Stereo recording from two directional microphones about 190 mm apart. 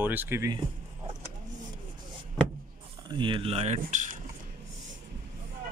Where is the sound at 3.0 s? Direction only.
25° right (ahead or behind); by 4.2 s 40° right (ahead or behind).